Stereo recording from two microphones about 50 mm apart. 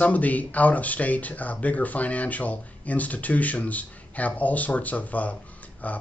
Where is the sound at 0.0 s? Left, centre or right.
Left.